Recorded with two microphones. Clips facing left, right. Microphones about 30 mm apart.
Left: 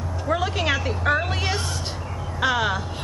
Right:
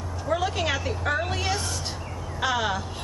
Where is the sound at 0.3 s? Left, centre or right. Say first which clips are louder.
Left 2 dB; centre.